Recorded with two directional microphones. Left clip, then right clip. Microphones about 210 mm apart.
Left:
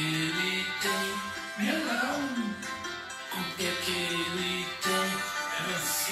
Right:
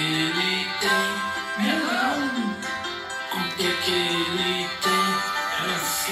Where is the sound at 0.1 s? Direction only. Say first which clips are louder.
Right 6 dB; 40° right (ahead or behind).